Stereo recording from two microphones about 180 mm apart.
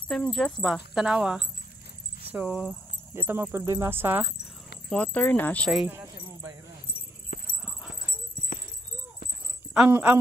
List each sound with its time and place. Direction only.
0.1 s speech: 5° left (ahead or behind)
4.8 s speech: 10° left (ahead or behind)
7.3 s dog: 45° left (ahead or behind)
8.5 s a sound: 50° left (ahead or behind)
9.8 s speech: 10° right (ahead or behind)